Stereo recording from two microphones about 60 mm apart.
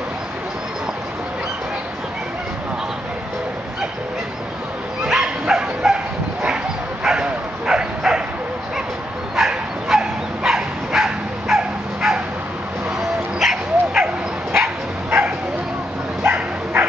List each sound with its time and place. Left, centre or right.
5.0 s dog: centre
6.4 s bow-wow: centre
9.3 s bow-wow: centre
13.4 s dog: centre
15.0 s bow-wow: right